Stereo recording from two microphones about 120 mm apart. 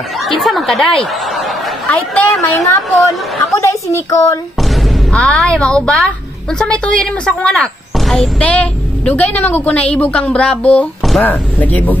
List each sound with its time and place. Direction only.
0.2 s chatter: centre (ahead or behind)
1.9 s a woman's voice: 10° left (ahead or behind)
5.1 s a woman's voice: 5° left (ahead or behind)